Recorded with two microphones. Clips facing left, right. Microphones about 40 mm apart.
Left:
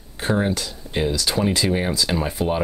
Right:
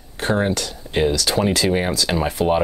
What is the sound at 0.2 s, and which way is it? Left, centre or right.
Speech, centre.